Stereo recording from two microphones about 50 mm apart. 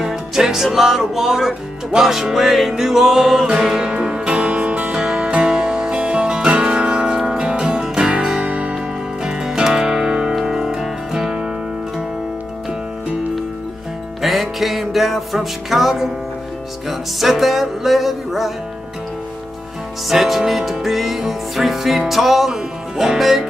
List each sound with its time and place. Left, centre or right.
0.0 s music: centre; by 4.9 s right
4.9 s music: centre
8.7 s music: centre
14.2 s music: centre
17.2 s music: centre
20.1 s music: centre